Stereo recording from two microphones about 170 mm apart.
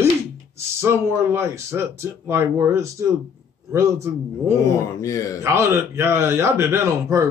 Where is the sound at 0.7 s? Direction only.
15° right (ahead or behind).